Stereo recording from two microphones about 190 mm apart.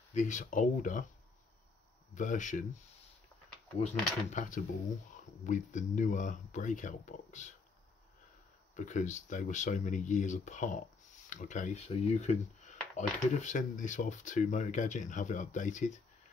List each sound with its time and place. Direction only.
0.1 s speech: 40° left (ahead or behind)
2.1 s speech: 40° left (ahead or behind)
3.8 s speech: 40° left (ahead or behind)
8.7 s speech: 40° left (ahead or behind)